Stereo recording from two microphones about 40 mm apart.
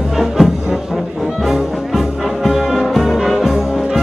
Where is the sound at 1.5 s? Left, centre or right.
Centre.